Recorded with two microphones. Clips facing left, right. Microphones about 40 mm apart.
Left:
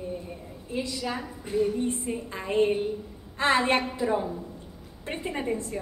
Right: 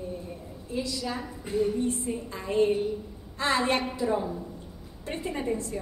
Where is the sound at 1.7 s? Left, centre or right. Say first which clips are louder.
Even; left.